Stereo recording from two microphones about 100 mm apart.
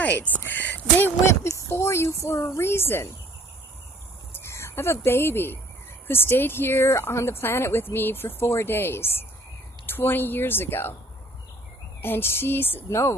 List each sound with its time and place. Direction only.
0.0 s speech: 15° left (ahead or behind)
4.3 s speech: 25° left (ahead or behind)
12.0 s speech: 20° left (ahead or behind)